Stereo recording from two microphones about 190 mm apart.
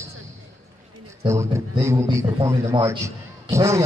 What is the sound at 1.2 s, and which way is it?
A man's voice, 15° right (ahead or behind).